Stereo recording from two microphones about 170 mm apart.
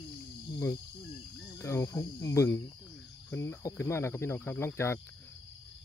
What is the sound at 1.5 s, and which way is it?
Speech, 15° left (ahead or behind).